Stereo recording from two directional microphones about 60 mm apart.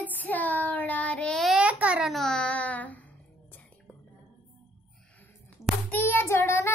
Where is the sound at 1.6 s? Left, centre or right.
Right.